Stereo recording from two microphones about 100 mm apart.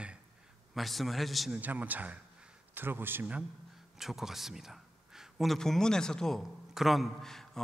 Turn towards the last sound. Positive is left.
turn(degrees=5)  # may be behind; listen again after turning